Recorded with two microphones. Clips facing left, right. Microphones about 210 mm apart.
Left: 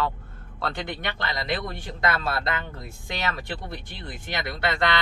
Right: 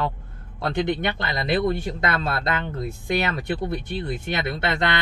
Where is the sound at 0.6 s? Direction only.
20° right (ahead or behind).